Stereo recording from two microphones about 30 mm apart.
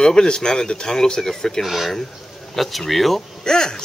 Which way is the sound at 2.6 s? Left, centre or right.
Centre.